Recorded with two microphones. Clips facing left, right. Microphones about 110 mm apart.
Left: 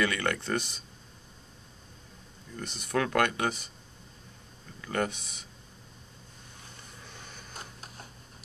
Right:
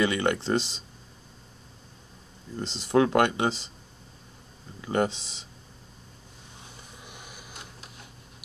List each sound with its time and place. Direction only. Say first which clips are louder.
0.0 s speech: right 4 dB; 20° right (ahead or behind)
2.5 s speech: right 7 dB; 25° right (ahead or behind)
4.8 s speech: right 5 dB; 25° right (ahead or behind)
7.0 s a sound: right 1 dB; 15° right (ahead or behind)
7.5 s printer: left 1 dB; 40° left (ahead or behind)